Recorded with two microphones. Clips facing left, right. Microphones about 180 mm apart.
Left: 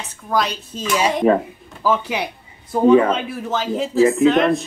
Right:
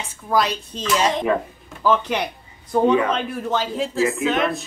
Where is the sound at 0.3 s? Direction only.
Centre (ahead or behind).